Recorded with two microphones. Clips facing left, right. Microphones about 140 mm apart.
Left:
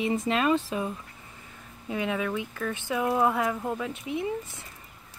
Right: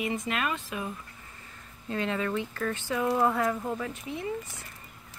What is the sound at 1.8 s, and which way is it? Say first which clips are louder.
Speech: left 1 dB; 10° left (ahead or behind).